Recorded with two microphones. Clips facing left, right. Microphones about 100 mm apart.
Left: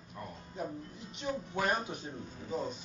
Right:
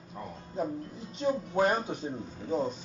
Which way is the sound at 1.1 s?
35° right (ahead or behind).